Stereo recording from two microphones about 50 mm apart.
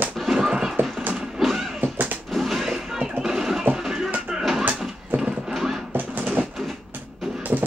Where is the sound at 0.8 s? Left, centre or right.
Right.